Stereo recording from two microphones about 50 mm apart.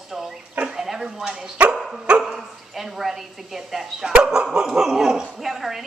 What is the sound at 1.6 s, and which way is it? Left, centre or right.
Speech, right.